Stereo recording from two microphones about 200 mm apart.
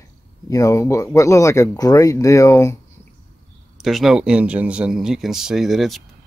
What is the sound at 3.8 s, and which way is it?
Speech, centre (ahead or behind).